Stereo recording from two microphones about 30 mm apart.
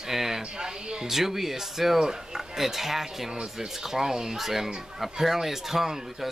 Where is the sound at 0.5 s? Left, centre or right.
Right.